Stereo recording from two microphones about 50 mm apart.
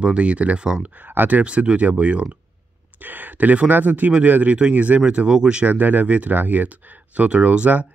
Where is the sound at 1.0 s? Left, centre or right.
Right.